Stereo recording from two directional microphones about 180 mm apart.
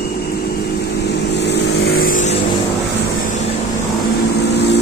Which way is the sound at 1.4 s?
70° left (ahead or behind).